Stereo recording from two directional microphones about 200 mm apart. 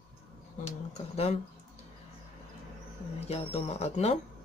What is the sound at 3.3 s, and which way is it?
Speech, 30° left (ahead or behind).